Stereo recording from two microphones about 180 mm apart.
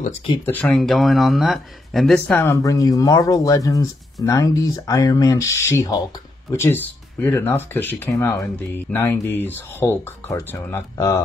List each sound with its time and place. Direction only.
0.5 s speech: 5° left (ahead or behind)
2.1 s speech: 10° left (ahead or behind)